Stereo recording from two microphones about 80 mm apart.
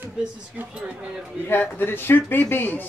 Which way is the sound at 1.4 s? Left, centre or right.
Left.